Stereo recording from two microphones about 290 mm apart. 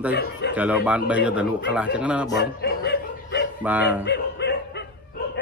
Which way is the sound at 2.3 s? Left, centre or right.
Left.